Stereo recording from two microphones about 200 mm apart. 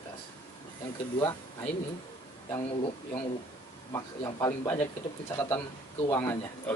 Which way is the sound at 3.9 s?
15° left (ahead or behind).